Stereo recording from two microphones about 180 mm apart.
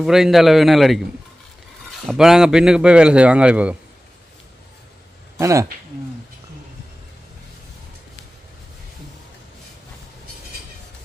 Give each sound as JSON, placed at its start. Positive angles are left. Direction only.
{"t": 0.0, "sound": "a man's voice", "side_deg": 0}
{"t": 5.4, "sound": "speech", "side_deg": -15}